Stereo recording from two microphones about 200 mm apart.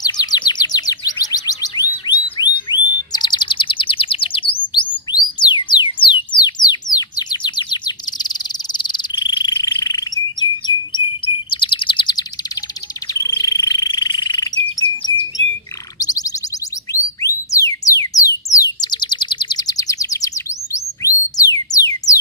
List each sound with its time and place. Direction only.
0.0 s chirp: 20° left (ahead or behind)
2.1 s whistle: 10° right (ahead or behind)
2.7 s bird: 20° left (ahead or behind)
4.7 s music: 25° left (ahead or behind)
10.9 s chirp: 25° left (ahead or behind)
13.1 s bird: 15° left (ahead or behind)
16.0 s a sound: 20° left (ahead or behind)
16.9 s music: 15° left (ahead or behind)